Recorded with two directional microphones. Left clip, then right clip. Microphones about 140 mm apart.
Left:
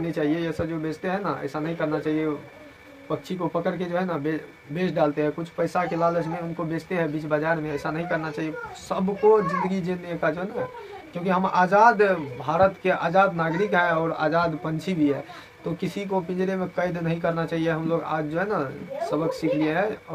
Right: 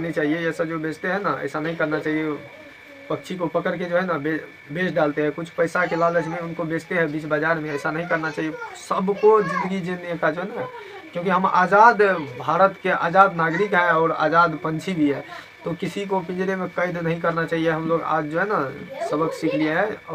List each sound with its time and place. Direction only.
0.1 s a man's voice: 10° left (ahead or behind)